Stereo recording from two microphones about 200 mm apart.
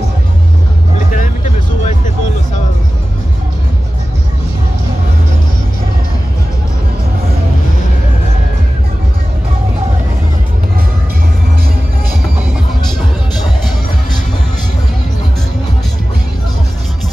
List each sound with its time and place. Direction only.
0.9 s vehicle: 40° left (ahead or behind)